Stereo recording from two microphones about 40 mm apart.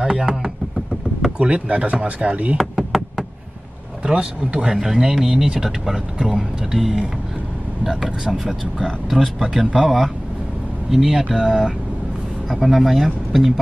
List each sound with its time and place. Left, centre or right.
0.0 s speech: centre
1.4 s speech: right
2.5 s a sound: centre
4.0 s speech: right
4.7 s speech: centre
12.4 s speech: centre